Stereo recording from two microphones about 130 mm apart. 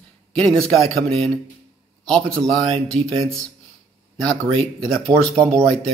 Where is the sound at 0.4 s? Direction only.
5° left (ahead or behind).